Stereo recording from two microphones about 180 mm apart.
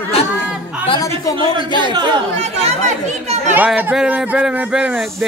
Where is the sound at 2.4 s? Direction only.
40° right (ahead or behind).